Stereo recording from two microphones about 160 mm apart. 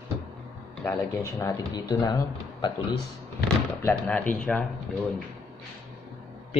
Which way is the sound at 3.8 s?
10° left (ahead or behind).